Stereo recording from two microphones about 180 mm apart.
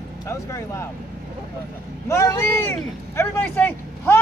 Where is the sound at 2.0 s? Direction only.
15° left (ahead or behind).